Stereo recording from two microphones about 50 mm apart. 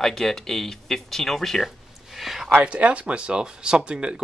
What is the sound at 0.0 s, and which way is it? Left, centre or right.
Speech, centre.